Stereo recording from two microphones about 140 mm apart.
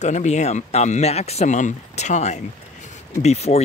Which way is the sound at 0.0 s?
55° left (ahead or behind).